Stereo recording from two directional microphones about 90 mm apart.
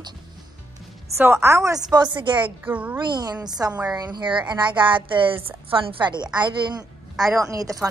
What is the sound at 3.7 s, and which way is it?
Speech, 15° right (ahead or behind).